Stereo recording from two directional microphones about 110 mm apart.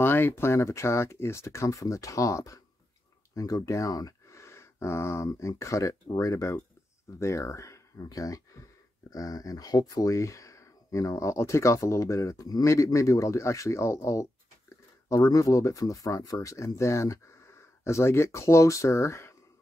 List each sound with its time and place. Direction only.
0.0 s speech: 20° left (ahead or behind)